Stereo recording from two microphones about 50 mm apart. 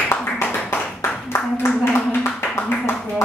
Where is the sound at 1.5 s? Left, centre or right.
Left.